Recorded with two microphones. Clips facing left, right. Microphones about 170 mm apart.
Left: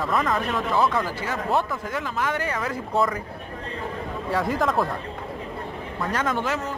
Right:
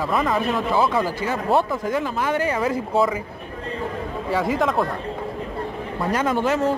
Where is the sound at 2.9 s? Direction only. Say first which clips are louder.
Right 2 dB; centre (ahead or behind).